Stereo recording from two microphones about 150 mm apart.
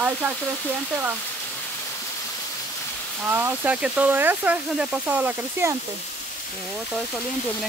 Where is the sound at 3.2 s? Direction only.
15° right (ahead or behind).